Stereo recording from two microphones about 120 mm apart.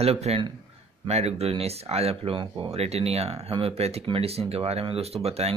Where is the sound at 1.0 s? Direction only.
60° right (ahead or behind).